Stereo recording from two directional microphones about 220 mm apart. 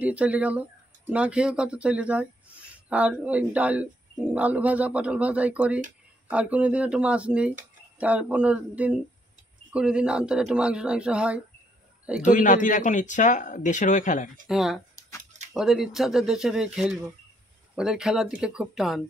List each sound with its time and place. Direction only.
0.0 s speech: 5° right (ahead or behind)
12.2 s speech: 35° left (ahead or behind)
14.5 s speech: centre (ahead or behind)